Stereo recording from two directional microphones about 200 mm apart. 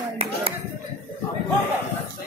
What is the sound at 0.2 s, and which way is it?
Clapping, 30° right (ahead or behind).